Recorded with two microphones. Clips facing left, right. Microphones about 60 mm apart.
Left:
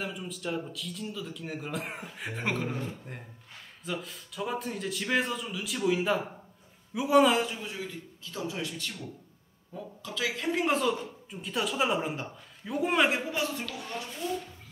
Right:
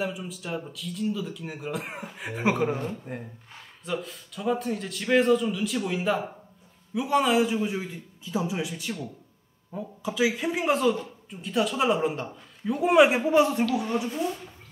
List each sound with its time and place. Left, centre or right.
0.0 s speech: centre
7.4 s speech: right; by 13.1 s centre
13.1 s a man's voice: centre
13.7 s speech: centre